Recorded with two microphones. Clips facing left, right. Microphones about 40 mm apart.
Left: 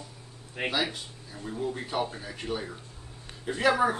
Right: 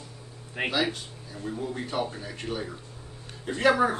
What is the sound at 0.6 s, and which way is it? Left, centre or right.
Speech, centre.